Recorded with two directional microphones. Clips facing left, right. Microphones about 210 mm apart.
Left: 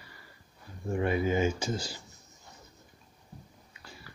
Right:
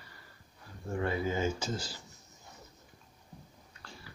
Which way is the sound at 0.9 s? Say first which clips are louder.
Left 4 dB; 20° left (ahead or behind).